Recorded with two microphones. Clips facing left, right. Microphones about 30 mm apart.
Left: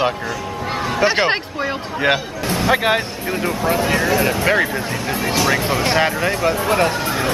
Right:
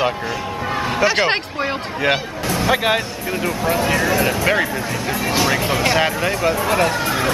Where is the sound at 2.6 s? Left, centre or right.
Centre.